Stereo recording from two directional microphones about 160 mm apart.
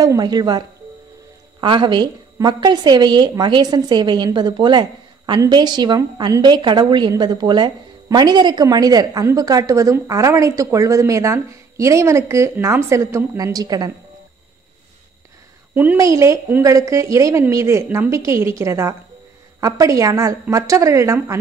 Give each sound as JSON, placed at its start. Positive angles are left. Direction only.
{"t": 0.0, "sound": "a woman's voice", "side_deg": -25}
{"t": 15.7, "sound": "a woman's voice", "side_deg": -10}